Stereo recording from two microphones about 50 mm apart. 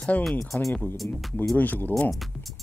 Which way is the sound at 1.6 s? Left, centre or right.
Left.